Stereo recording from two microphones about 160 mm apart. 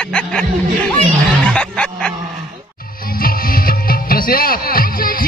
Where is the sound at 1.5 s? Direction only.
5° left (ahead or behind).